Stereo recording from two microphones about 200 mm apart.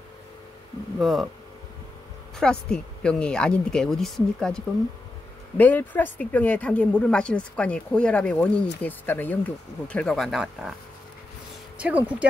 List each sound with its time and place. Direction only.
0.9 s speech: centre (ahead or behind)
2.3 s speech: 5° left (ahead or behind)
11.8 s speech: 5° right (ahead or behind)